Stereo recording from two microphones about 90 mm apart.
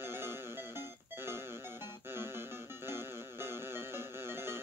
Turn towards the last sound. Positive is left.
turn(degrees=-25)  # may be behind; listen again after turning